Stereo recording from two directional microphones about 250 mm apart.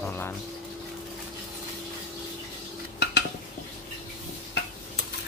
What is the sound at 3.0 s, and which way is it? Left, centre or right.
Dishes, left.